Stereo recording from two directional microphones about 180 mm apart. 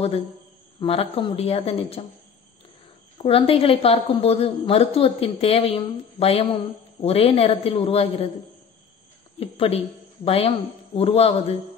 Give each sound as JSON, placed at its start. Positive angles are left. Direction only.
{"t": 0.7, "sound": "a woman's voice", "side_deg": 30}
{"t": 3.2, "sound": "a woman's voice", "side_deg": 30}
{"t": 9.4, "sound": "a woman's voice", "side_deg": 35}